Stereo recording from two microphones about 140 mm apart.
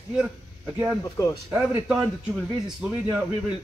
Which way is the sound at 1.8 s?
5° right (ahead or behind).